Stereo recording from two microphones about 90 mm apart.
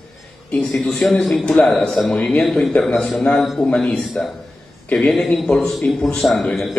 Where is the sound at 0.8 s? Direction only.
5° left (ahead or behind).